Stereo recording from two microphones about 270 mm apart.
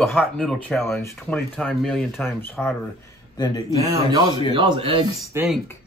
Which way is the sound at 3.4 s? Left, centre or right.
Centre.